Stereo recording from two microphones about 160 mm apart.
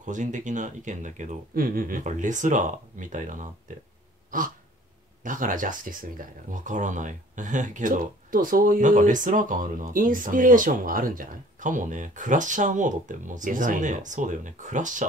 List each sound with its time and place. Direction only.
0.0 s speech: 50° right (ahead or behind)
5.2 s speech: 55° right (ahead or behind)